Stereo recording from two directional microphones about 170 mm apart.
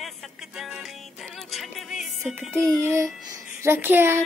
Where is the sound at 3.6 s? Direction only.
15° right (ahead or behind).